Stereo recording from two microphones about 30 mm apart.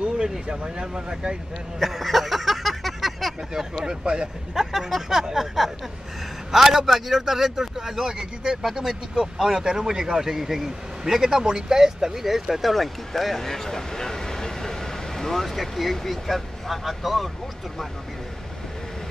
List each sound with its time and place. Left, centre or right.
0.7 s speech: right
1.8 s a sound: centre
3.5 s speech: centre
4.6 s speech: centre
8.6 s speech: centre
12.2 s vehicle: centre
15.4 s speech: centre